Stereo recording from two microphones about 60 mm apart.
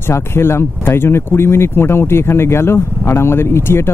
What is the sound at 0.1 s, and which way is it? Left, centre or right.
Speech, left.